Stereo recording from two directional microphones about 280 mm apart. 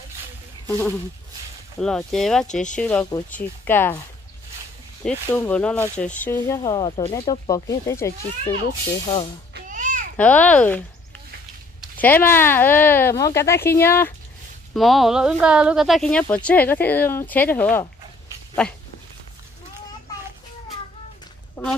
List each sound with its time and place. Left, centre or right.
0.7 s speech: centre
5.0 s speech: centre
9.5 s babbling: right
10.1 s speech: centre
12.0 s speech: centre